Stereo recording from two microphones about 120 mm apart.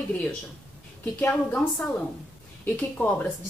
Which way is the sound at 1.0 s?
15° left (ahead or behind).